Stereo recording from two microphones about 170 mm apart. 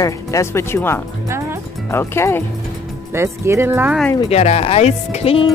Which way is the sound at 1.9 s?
15° left (ahead or behind).